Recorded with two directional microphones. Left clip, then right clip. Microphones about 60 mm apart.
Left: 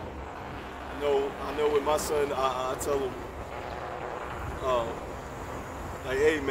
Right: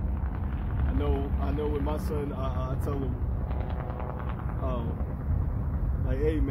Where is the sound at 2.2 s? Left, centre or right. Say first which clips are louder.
Left 8 dB; centre.